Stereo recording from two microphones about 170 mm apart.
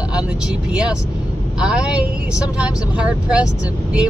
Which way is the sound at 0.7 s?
5° right (ahead or behind).